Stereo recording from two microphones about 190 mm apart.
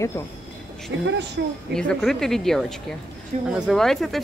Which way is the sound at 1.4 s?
65° right (ahead or behind).